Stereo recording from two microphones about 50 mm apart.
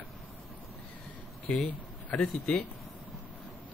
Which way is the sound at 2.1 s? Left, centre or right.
Left.